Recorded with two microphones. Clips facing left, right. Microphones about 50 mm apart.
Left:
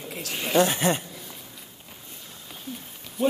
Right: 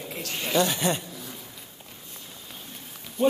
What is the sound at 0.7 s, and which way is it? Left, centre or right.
Speech, left.